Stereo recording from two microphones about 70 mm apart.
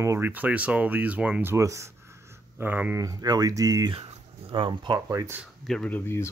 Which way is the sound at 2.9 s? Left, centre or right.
Right.